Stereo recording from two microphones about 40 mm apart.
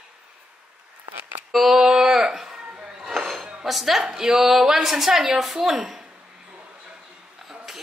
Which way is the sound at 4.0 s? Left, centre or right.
Centre.